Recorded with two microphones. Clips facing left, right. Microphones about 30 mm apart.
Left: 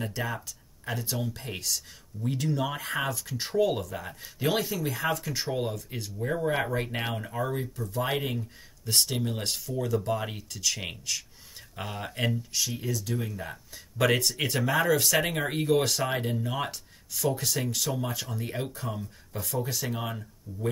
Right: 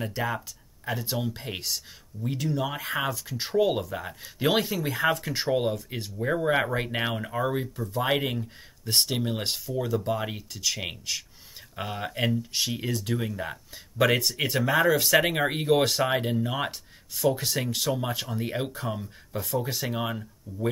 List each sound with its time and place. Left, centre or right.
0.2 s speech: centre
2.2 s speech: centre
3.5 s speech: centre
12.5 s speech: right
13.4 s speech: centre
20.5 s speech: right